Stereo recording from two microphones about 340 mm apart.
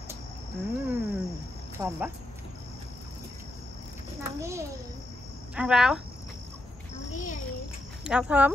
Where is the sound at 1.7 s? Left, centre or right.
Centre.